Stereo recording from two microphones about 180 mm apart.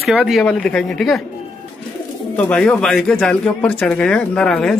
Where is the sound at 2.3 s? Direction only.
10° left (ahead or behind).